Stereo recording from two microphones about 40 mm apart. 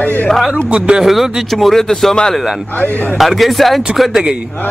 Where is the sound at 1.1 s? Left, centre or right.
Centre.